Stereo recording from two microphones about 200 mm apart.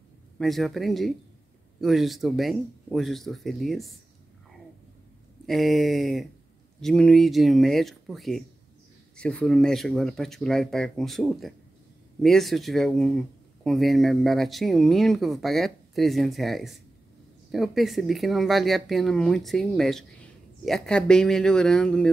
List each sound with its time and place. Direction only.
0.4 s speech: centre (ahead or behind)
5.5 s speech: centre (ahead or behind)